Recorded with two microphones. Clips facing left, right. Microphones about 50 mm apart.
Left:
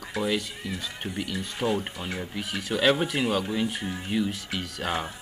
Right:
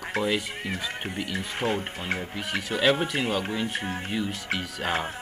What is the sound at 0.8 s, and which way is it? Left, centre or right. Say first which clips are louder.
Speech: right 2 dB; right.